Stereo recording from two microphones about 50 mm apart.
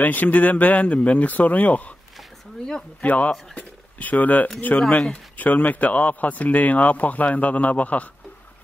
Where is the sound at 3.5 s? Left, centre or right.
Left.